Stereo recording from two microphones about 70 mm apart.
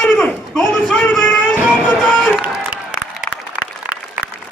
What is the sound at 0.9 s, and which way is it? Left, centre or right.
Music, centre.